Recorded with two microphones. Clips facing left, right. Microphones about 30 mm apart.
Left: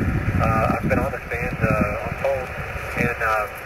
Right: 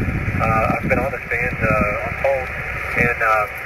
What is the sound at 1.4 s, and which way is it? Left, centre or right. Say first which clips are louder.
Speech: right 3 dB; right.